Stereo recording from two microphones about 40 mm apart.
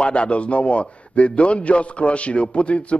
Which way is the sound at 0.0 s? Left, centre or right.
Left.